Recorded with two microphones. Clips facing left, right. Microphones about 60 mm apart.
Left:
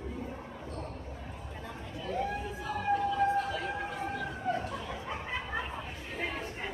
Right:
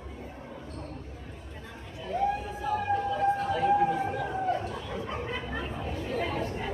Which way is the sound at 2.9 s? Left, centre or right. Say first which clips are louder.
Left 1 dB; centre.